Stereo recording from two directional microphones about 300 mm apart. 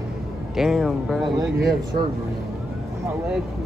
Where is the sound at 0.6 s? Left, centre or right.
Centre.